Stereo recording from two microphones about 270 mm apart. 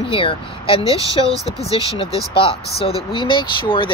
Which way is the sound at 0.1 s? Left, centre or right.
Centre.